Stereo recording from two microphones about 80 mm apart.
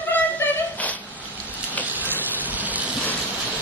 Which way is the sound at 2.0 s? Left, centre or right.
Right.